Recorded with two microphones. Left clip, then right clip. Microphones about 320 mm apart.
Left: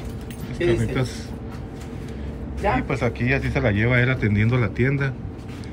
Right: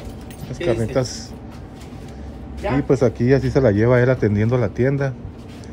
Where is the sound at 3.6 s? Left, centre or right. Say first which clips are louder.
Right 5 dB; left.